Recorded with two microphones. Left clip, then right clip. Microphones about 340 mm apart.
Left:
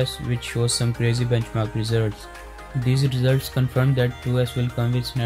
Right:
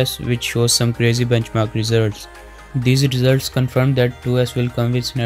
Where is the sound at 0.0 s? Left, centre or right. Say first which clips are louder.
Right 7 dB; right.